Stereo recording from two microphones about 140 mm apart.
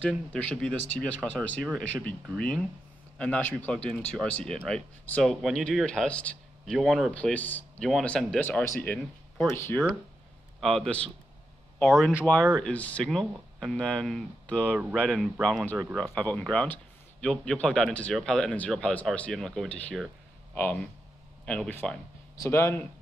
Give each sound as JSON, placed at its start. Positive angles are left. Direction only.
{"t": 0.0, "sound": "speech", "side_deg": 10}
{"t": 10.6, "sound": "speech", "side_deg": 0}
{"t": 14.8, "sound": "speech", "side_deg": -10}
{"t": 15.4, "sound": "speech", "side_deg": 5}